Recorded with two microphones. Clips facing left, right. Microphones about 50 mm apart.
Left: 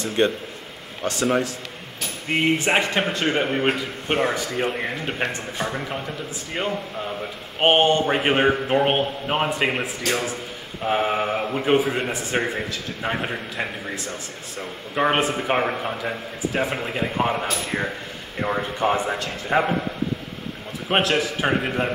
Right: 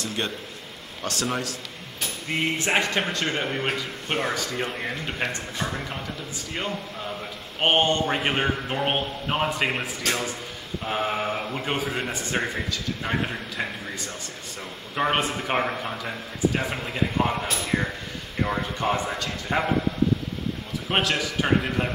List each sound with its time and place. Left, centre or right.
0.0 s a man's voice: left
2.3 s a man's voice: left
7.6 s a man's voice: centre
15.0 s speech: centre
16.5 s a man's voice: left
18.4 s a man's voice: centre
20.9 s a man's voice: centre